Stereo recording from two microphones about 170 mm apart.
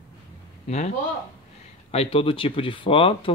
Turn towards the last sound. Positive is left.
turn(degrees=35)  # may be behind; listen again after turning